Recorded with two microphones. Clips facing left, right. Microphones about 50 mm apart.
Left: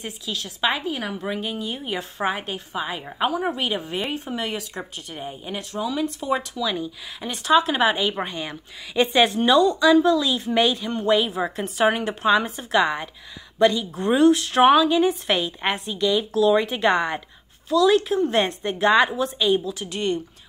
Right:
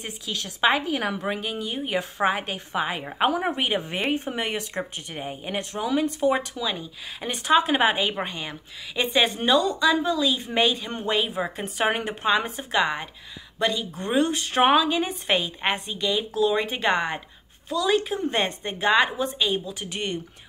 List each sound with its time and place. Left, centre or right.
0.7 s a woman's voice: right
5.1 s speech: centre
5.4 s a woman's voice: right
6.6 s speech: centre
9.0 s a woman's voice: centre
19.9 s speech: right